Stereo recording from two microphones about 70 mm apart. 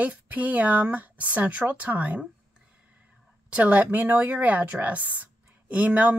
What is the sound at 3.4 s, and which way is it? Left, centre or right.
Speech, right.